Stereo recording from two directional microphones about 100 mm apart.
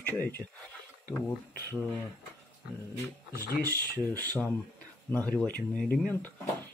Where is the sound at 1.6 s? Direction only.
25° left (ahead or behind).